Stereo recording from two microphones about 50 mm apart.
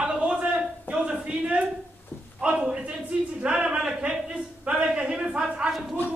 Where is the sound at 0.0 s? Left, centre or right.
Right.